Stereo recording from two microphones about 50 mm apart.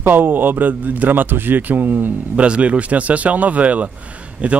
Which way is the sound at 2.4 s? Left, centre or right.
Right.